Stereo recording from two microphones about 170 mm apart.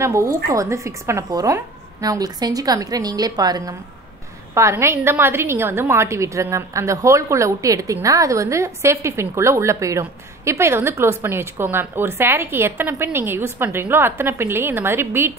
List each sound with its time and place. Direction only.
0.0 s a woman's voice: 15° right (ahead or behind)